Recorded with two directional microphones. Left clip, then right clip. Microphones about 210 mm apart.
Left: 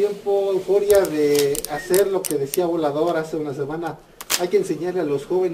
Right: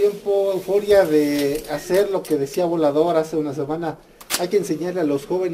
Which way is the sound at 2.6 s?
50° right (ahead or behind).